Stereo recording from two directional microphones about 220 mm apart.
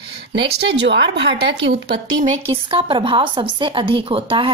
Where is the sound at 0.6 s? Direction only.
55° right (ahead or behind).